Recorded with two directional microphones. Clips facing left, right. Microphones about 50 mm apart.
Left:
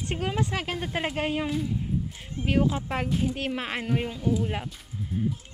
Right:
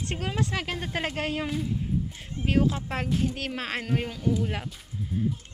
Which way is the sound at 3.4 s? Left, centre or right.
Left.